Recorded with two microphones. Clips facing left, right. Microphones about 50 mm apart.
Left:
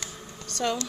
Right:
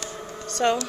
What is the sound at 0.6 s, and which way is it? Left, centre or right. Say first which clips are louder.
Speech: right 6 dB; right.